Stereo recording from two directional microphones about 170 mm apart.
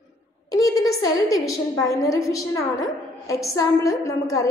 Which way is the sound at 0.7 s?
20° left (ahead or behind).